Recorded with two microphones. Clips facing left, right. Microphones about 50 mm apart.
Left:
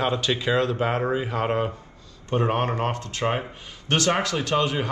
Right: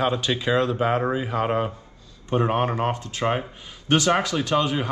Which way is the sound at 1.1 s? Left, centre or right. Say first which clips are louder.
Right 1 dB; left.